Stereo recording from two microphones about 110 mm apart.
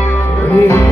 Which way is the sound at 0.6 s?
25° left (ahead or behind).